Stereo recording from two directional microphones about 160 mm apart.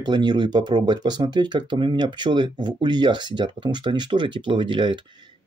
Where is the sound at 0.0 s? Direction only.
25° right (ahead or behind).